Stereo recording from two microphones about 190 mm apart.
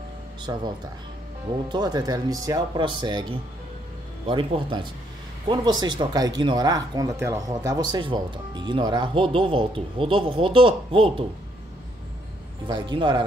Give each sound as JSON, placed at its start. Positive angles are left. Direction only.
{"t": 0.5, "sound": "speech", "side_deg": -20}
{"t": 1.7, "sound": "speech", "side_deg": -20}
{"t": 4.3, "sound": "speech", "side_deg": -25}
{"t": 12.6, "sound": "speech", "side_deg": -25}